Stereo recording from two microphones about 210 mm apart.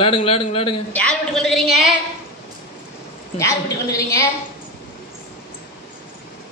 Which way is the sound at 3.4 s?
15° left (ahead or behind).